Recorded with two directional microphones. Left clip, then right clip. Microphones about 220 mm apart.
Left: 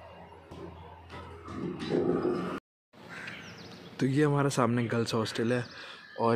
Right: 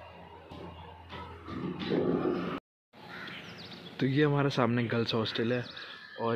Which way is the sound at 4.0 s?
10° left (ahead or behind).